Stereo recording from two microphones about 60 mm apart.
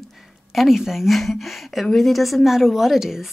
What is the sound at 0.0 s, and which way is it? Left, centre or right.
A woman's voice, centre.